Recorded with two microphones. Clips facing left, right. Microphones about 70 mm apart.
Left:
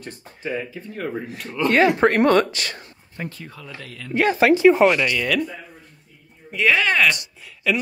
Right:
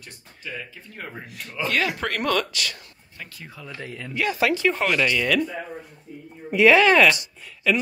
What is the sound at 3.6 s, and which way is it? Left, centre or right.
Speech, right.